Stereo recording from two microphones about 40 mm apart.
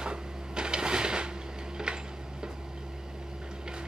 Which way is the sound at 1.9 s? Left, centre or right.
Right.